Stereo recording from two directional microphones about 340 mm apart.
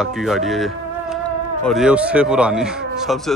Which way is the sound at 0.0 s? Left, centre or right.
Centre.